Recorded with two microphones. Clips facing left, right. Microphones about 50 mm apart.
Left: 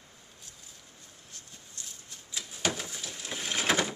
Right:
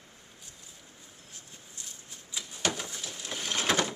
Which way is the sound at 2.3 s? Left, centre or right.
Centre.